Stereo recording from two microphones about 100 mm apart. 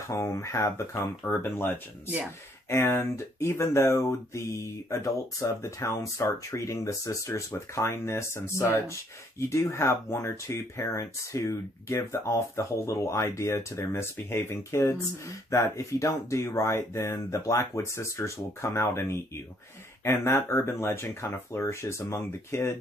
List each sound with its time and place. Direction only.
0.2 s speech: 30° left (ahead or behind)
1.2 s speech: 5° left (ahead or behind)
2.7 s speech: 25° left (ahead or behind)